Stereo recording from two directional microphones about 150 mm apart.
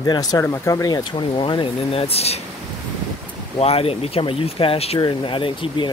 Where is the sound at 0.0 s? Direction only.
25° left (ahead or behind); by 2.4 s 45° left (ahead or behind).